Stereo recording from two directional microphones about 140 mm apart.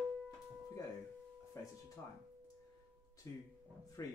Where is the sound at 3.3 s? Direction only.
20° left (ahead or behind).